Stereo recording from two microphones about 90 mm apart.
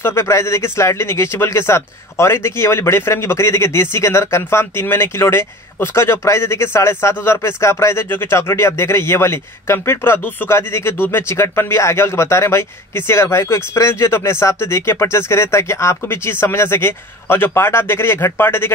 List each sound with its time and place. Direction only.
0.0 s speech: 30° left (ahead or behind)